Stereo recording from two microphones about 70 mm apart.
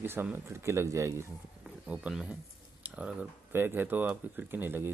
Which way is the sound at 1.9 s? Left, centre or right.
Centre.